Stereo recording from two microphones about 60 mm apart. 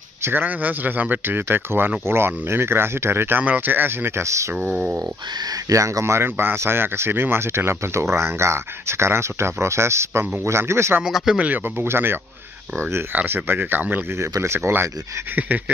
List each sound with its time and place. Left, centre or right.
0.2 s speech: right
4.2 s speech: right
4.9 s speech: right
11.0 s speech: centre
11.3 s pant: right
11.6 s speech: right
14.4 s speech: right
15.3 s pant: right